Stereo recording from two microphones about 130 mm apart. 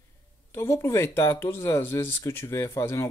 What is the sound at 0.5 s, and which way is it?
Speech, 20° left (ahead or behind).